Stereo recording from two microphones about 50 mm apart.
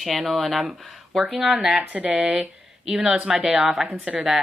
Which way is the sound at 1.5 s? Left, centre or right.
Right.